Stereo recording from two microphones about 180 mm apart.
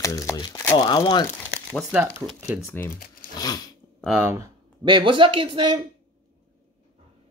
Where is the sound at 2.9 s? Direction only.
50° left (ahead or behind).